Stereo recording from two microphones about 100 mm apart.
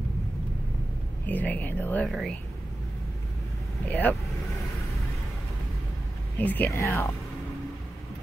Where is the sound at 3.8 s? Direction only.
15° left (ahead or behind).